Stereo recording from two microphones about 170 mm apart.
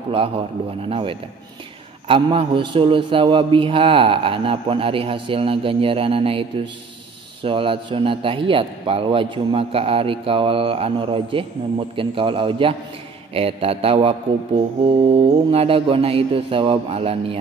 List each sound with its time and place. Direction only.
0.8 s a man's voice: 35° right (ahead or behind)
7.4 s a man's voice: 30° right (ahead or behind)